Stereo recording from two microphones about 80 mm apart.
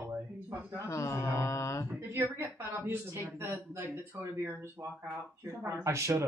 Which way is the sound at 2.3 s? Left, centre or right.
Right.